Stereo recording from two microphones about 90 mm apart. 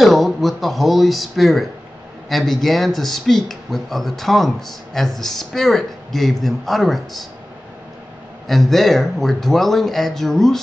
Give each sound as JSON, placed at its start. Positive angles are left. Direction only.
{"t": 0.0, "sound": "speech", "side_deg": 0}
{"t": 8.5, "sound": "speech", "side_deg": 0}